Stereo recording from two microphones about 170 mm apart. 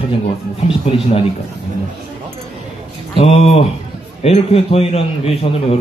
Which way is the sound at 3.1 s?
35° left (ahead or behind).